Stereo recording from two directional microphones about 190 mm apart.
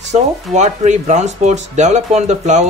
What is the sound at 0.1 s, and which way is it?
Speech, 35° right (ahead or behind).